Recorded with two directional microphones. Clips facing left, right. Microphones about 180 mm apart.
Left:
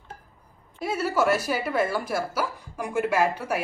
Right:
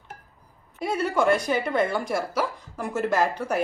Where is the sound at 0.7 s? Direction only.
5° left (ahead or behind).